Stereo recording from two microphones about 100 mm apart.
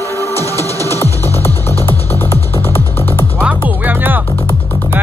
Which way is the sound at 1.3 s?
25° left (ahead or behind).